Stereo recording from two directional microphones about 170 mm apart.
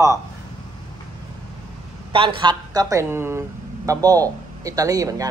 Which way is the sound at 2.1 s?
30° right (ahead or behind).